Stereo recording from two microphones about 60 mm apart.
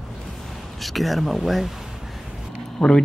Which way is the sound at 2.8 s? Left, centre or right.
Centre.